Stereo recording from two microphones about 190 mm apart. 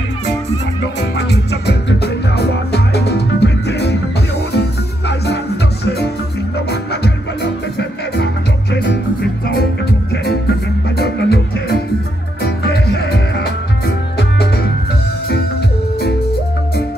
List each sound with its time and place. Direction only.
1.1 s music: 60° left (ahead or behind)
6.7 s music: 60° left (ahead or behind)
8.7 s music: 60° left (ahead or behind)
11.0 s music: 60° left (ahead or behind)